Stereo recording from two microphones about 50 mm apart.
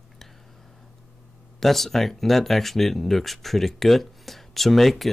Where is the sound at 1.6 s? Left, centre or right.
Centre.